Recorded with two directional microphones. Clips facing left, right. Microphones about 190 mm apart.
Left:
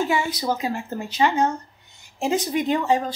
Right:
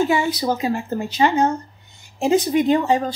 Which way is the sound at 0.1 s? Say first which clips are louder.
Right 4 dB; 30° right (ahead or behind).